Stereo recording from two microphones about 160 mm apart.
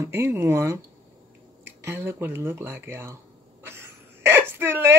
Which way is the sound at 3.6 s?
15° right (ahead or behind).